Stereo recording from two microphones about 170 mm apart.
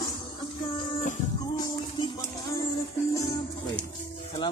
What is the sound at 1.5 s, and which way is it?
Music, 25° left (ahead or behind).